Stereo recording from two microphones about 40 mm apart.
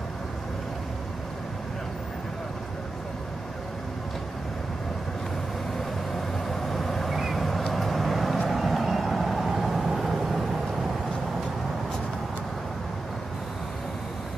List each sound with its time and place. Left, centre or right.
6.4 s vehicle: centre